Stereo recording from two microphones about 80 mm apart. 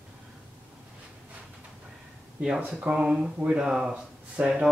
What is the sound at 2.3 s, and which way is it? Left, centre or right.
Speech, centre.